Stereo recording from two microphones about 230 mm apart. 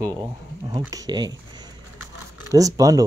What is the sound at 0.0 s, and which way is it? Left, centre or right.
Speech, centre.